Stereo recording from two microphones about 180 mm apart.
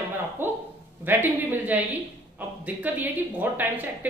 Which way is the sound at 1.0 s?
10° right (ahead or behind).